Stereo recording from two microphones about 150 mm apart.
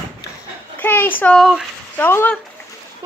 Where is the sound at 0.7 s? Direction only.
10° left (ahead or behind).